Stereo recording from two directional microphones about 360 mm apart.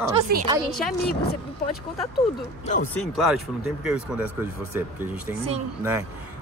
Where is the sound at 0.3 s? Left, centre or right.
Right.